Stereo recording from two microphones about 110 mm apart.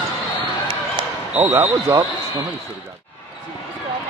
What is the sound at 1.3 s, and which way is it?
Speech, 15° right (ahead or behind).